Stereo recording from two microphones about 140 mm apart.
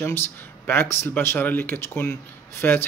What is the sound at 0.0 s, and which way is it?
Speech, 15° left (ahead or behind).